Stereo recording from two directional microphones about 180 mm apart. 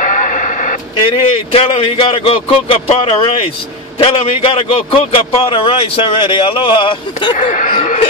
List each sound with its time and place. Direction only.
0.0 s radio: 45° left (ahead or behind)
1.5 s a man's voice: 30° left (ahead or behind)
7.3 s speech: 45° left (ahead or behind)